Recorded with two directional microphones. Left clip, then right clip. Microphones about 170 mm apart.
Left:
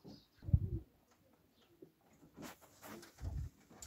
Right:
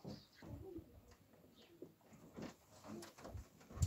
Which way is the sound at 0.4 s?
45° right (ahead or behind).